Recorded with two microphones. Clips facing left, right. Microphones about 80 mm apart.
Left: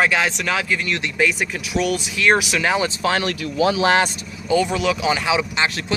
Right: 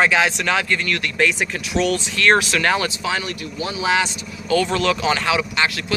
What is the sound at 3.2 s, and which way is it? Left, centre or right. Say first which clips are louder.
Speech: left 8 dB; left.